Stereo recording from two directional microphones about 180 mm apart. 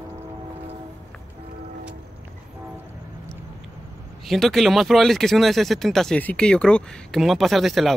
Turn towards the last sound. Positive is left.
turn(degrees=0)  # may be behind; listen again after turning